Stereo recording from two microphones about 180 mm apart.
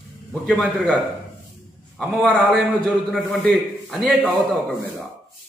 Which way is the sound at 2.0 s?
Centre (ahead or behind).